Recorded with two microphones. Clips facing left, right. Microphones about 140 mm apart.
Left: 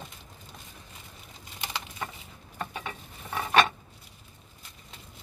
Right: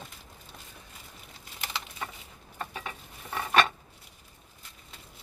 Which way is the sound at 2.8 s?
Centre (ahead or behind).